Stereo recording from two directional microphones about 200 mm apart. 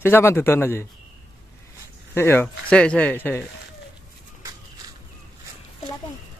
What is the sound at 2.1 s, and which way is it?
Speech, 10° left (ahead or behind).